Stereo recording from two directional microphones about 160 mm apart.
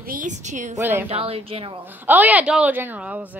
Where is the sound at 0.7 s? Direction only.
15° right (ahead or behind).